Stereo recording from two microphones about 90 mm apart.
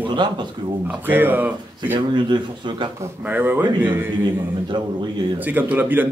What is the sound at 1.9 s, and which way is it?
Speech, 60° right (ahead or behind).